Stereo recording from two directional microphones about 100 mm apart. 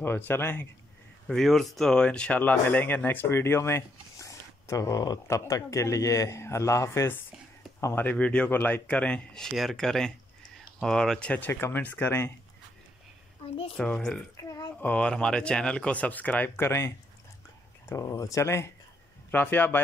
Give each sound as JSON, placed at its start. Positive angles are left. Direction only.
{"t": 0.0, "sound": "speech", "side_deg": 20}
{"t": 1.2, "sound": "speech", "side_deg": 5}
{"t": 13.7, "sound": "speech", "side_deg": 5}
{"t": 14.3, "sound": "a sound", "side_deg": 35}
{"t": 14.8, "sound": "speech", "side_deg": 15}